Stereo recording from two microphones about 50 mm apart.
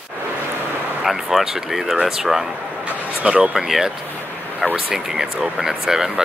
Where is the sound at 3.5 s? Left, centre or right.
Centre.